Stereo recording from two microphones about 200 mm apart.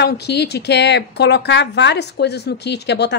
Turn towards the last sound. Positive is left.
turn(degrees=60)  # may be behind; listen again after turning